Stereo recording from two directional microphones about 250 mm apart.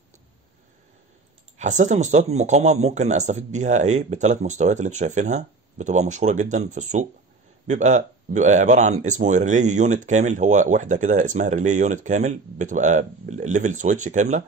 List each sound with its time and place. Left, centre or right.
1.6 s speech: right